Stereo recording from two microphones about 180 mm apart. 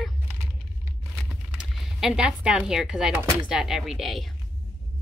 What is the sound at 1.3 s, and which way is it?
Speech, 5° right (ahead or behind).